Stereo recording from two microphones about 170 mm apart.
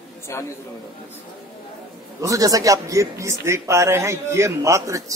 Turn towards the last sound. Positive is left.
turn(degrees=-20)  # may be behind; listen again after turning